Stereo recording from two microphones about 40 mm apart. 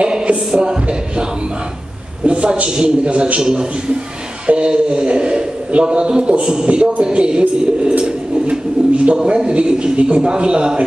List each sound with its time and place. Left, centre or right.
0.0 s music: right
2.2 s speech: right